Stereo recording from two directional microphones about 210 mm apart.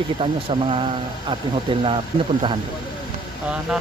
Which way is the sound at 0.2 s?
25° right (ahead or behind).